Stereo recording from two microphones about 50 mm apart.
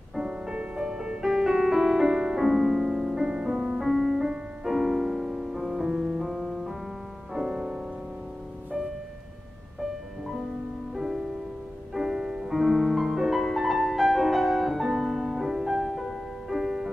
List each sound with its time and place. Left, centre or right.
0.1 s music: centre
3.2 s music: centre
7.3 s music: centre
11.9 s music: centre